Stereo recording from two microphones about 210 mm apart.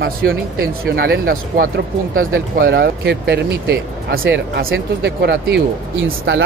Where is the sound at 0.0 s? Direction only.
45° right (ahead or behind).